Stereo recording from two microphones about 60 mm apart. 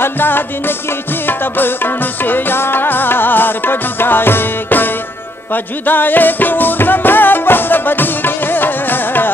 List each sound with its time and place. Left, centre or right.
0.0 s music: left